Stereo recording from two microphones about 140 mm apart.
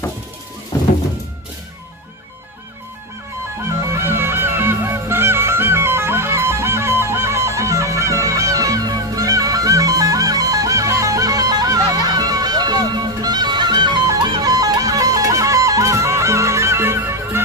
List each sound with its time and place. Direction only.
0.7 s music: 20° left (ahead or behind)
3.9 s music: 15° right (ahead or behind)